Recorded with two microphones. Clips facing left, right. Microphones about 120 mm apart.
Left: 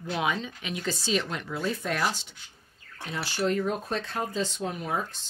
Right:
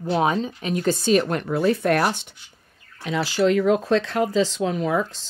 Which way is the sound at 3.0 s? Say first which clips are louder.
Right 8 dB; 90° right.